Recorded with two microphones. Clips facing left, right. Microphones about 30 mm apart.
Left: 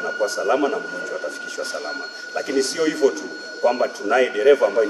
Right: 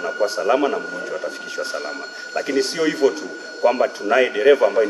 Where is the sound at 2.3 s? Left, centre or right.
Centre.